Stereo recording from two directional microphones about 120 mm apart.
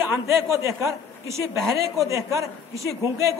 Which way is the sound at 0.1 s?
25° right (ahead or behind).